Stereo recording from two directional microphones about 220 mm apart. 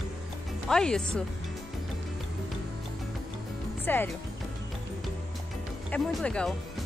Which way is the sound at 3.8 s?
10° left (ahead or behind).